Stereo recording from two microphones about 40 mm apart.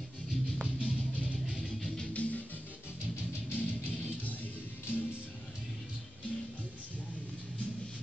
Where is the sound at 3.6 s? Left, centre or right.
Left.